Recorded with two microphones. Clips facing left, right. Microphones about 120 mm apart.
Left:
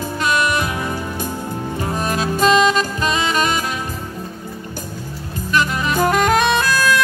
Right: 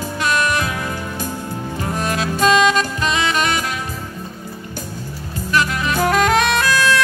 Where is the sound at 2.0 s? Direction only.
40° left (ahead or behind).